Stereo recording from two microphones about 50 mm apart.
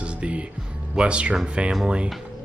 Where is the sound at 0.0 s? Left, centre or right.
Right.